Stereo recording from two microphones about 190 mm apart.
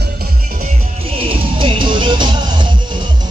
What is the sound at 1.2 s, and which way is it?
Music, 25° right (ahead or behind).